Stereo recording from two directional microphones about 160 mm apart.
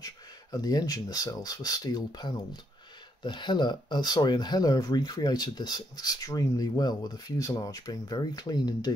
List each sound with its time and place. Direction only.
0.0 s speech: 25° left (ahead or behind)